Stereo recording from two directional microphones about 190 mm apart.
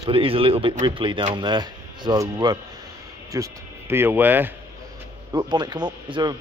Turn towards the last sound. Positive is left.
turn(degrees=-25)  # may be behind; listen again after turning